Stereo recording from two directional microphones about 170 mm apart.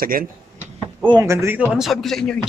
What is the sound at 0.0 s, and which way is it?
Speech, 55° right (ahead or behind).